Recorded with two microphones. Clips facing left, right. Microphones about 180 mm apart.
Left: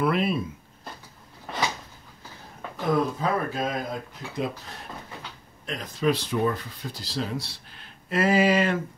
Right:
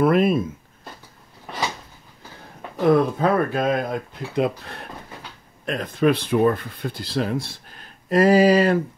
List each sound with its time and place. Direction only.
0.0 s speech: 45° right (ahead or behind)
2.9 s speech: 60° right (ahead or behind); by 8.7 s 40° right (ahead or behind)